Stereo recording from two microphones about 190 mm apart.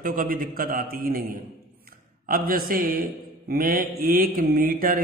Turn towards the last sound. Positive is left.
turn(degrees=-50)  # may be behind; listen again after turning